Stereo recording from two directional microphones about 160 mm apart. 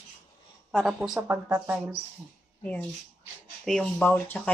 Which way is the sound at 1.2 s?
15° right (ahead or behind).